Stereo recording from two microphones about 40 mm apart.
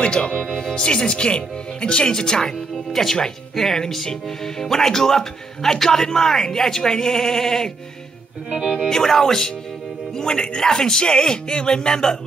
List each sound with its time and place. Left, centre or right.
0.0 s speech: left
2.9 s speech: centre
8.5 s speech: centre
8.8 s speech: centre